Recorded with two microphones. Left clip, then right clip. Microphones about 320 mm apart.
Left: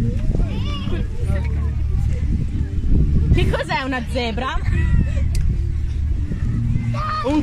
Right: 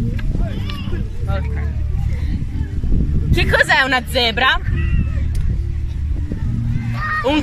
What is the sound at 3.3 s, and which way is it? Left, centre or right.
Speech, right.